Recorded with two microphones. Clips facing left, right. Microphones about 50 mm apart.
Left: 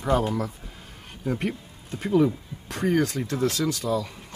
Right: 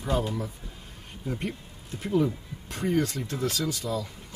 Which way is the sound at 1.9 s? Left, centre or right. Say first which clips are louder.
Left 4 dB; left.